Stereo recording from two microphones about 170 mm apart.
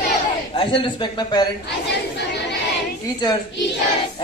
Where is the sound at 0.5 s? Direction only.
30° left (ahead or behind).